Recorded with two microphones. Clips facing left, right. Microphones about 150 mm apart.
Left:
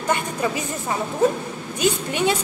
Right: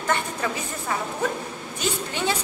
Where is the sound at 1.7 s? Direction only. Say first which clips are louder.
Left 6 dB; 15° left (ahead or behind).